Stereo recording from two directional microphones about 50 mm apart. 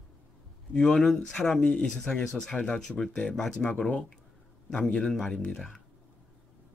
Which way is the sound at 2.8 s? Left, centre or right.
Centre.